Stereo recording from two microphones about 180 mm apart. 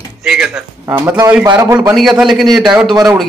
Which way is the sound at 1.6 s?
20° right (ahead or behind).